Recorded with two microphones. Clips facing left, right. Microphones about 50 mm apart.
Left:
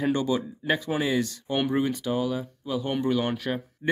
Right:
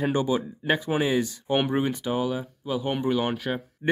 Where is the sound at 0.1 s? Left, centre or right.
Right.